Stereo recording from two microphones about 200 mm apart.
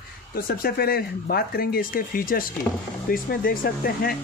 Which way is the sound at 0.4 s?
45° left (ahead or behind).